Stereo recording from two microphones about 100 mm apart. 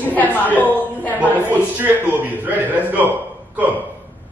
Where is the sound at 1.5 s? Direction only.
20° right (ahead or behind).